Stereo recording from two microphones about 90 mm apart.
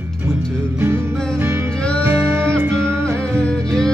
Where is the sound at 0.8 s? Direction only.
30° right (ahead or behind).